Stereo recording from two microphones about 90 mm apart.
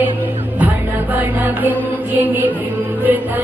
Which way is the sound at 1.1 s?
20° right (ahead or behind).